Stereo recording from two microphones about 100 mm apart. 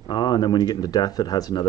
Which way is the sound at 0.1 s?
45° left (ahead or behind).